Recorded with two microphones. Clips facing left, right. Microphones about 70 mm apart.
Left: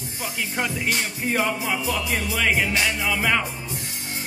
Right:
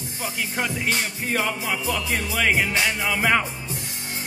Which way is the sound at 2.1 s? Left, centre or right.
Centre.